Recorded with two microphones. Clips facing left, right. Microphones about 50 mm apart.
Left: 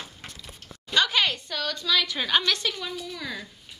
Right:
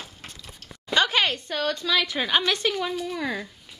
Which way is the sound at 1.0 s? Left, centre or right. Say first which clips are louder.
Right 1 dB; right.